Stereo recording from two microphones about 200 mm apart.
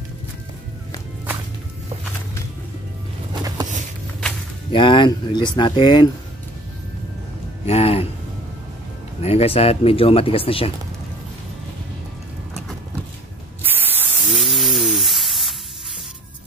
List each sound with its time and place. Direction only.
4.7 s speech: 25° left (ahead or behind)
7.6 s speech: 30° left (ahead or behind)
9.2 s speech: 30° left (ahead or behind)
13.6 s spray: 10° right (ahead or behind)